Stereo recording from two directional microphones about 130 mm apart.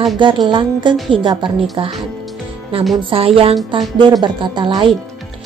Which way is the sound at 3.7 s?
35° right (ahead or behind).